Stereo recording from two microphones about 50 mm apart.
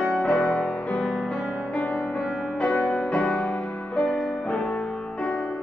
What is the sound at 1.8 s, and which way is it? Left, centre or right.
Music, left.